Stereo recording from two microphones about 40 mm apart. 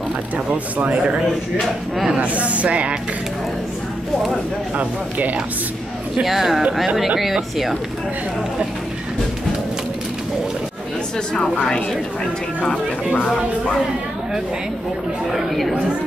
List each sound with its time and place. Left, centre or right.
0.5 s speech: right
2.1 s speech: right
4.7 s speech: right
6.2 s speech: centre